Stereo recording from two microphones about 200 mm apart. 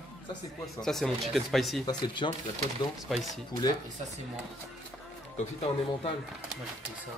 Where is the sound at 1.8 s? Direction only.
25° left (ahead or behind).